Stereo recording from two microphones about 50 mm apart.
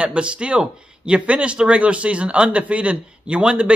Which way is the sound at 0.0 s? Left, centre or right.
Right.